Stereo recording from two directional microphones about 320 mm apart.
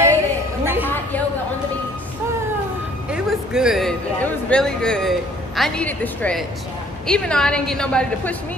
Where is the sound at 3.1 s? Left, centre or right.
Centre.